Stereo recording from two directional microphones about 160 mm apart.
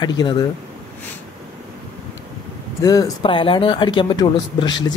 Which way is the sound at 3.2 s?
35° left (ahead or behind).